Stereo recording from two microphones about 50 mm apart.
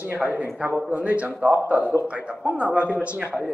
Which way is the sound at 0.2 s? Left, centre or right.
Right.